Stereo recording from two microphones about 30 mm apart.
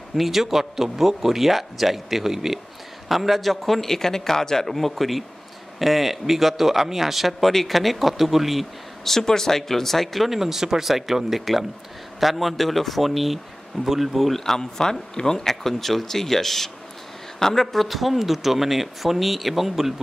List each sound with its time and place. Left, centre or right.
0.1 s a man's voice: centre
9.0 s a man's voice: centre
10.2 s speech: centre
14.3 s a man's voice: centre
14.6 s speech: left
15.4 s a man's voice: centre
17.7 s speech: centre